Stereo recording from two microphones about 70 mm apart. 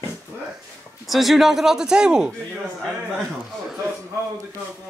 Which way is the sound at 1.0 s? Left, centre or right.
Centre.